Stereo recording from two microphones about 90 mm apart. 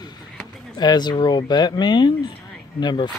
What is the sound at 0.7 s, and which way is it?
Speech, 50° left (ahead or behind).